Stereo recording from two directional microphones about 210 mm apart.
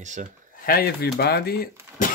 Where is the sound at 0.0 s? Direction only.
35° right (ahead or behind).